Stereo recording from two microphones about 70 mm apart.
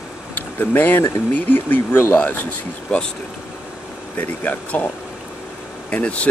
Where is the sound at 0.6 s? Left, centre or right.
Left.